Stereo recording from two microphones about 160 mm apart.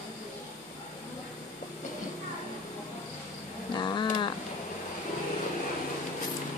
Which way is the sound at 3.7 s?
30° left (ahead or behind).